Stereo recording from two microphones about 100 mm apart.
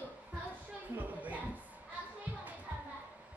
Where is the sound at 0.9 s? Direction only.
15° right (ahead or behind).